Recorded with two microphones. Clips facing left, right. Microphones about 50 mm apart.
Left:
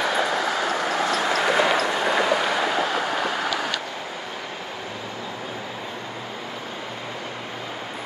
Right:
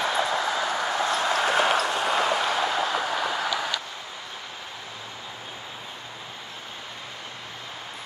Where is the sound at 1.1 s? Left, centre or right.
Left.